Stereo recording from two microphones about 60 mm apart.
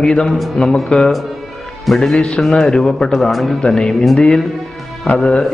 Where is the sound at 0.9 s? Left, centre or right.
Centre.